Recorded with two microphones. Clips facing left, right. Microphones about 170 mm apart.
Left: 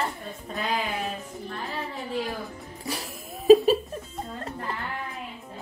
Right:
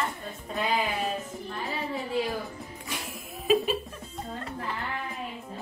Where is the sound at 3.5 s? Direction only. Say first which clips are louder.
Left 9 dB; 40° left (ahead or behind).